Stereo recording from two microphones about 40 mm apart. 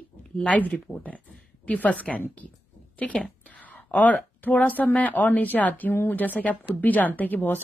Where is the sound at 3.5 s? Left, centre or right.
Left.